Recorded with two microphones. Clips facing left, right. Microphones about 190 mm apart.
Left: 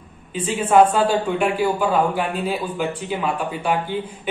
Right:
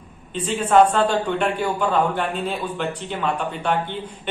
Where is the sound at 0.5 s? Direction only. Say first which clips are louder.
Left 1 dB; 5° left (ahead or behind).